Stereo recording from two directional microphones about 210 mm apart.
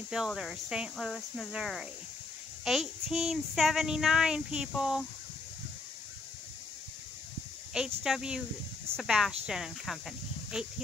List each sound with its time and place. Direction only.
0.1 s speech: centre (ahead or behind)
7.7 s speech: 5° right (ahead or behind)